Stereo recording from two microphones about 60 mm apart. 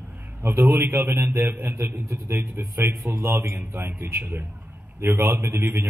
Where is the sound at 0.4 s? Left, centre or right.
Right.